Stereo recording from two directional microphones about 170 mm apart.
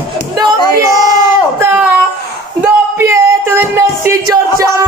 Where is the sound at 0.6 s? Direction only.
25° left (ahead or behind).